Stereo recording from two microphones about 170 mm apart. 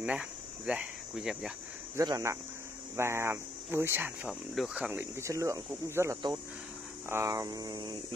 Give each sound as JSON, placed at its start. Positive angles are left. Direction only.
{"t": 0.0, "sound": "speech", "side_deg": -5}
{"t": 2.0, "sound": "mains hum", "side_deg": -20}
{"t": 3.0, "sound": "speech", "side_deg": -15}
{"t": 7.1, "sound": "mains hum", "side_deg": -15}